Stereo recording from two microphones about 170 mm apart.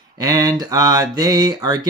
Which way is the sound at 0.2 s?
20° right (ahead or behind).